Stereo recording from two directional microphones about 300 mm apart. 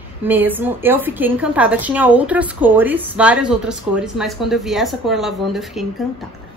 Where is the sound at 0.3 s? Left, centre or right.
Centre.